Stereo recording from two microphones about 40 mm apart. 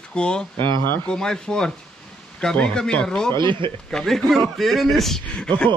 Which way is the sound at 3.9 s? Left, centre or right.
Centre.